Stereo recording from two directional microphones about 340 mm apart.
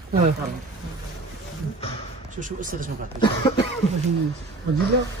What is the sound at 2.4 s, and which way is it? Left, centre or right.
Speech, right.